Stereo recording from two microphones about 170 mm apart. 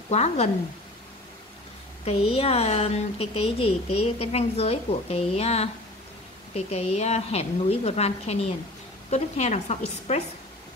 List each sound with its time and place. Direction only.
0.1 s a woman's voice: 40° left (ahead or behind)
2.0 s a woman's voice: 35° left (ahead or behind)